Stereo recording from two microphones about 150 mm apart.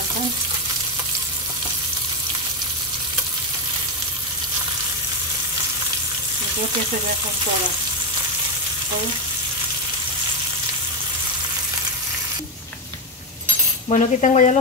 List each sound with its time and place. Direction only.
13.8 s speech: 50° left (ahead or behind)